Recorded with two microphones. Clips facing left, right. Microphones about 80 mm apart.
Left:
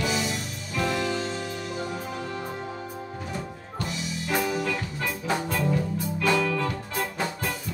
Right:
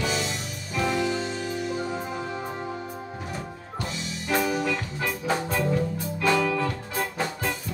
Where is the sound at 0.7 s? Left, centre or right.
Centre.